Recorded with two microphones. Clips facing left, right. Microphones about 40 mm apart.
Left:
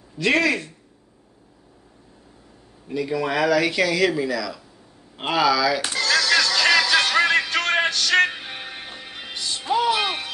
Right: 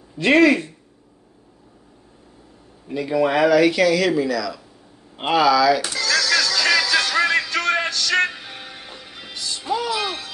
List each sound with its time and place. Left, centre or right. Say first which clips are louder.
0.2 s speech: right 5 dB; centre
2.9 s speech: right 4 dB; centre
5.9 s music: even; left